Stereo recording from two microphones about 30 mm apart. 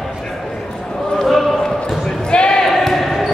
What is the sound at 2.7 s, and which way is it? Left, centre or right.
Basketball bounce, centre.